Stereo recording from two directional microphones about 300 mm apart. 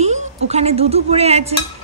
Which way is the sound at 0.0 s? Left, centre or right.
Right.